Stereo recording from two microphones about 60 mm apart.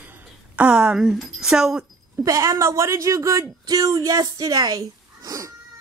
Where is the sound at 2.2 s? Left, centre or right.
Right.